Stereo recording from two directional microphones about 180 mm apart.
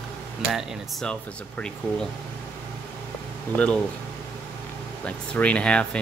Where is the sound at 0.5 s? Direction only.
5° left (ahead or behind).